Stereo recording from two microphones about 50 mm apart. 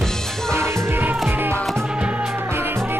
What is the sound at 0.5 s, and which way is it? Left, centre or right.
Music, right.